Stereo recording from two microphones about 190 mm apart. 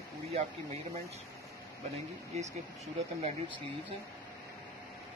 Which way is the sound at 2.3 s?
35° right (ahead or behind).